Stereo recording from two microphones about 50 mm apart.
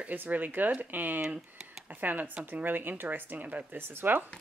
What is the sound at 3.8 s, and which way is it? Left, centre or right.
Speech, right.